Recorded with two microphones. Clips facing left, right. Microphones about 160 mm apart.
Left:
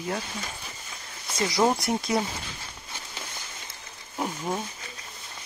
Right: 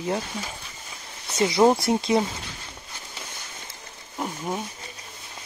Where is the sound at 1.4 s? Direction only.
20° right (ahead or behind).